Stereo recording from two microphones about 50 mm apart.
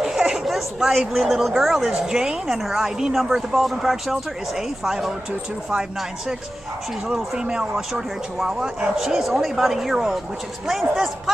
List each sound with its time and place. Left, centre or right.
0.0 s speech: centre
7.1 s speech: centre